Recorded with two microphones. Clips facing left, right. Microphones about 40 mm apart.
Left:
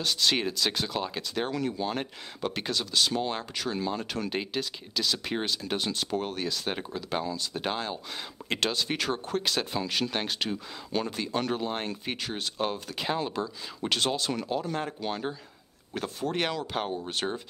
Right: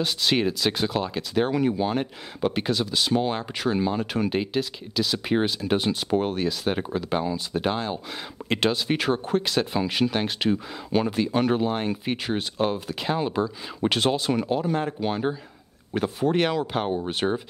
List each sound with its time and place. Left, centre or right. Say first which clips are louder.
0.0 s speech: right 4 dB; centre
6.8 s speech: right 6 dB; centre
7.6 s speech: right 4 dB; centre
9.4 s speech: right 5 dB; centre
13.7 s speech: right 5 dB; centre